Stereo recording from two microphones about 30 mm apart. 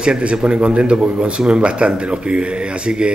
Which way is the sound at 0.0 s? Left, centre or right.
Right.